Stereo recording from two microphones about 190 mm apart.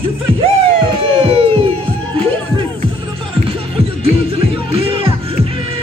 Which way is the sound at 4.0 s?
30° right (ahead or behind).